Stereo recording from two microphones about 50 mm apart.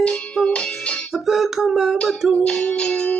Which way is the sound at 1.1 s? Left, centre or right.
Centre.